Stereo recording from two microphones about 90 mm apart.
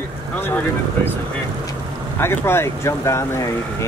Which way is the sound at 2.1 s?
25° left (ahead or behind).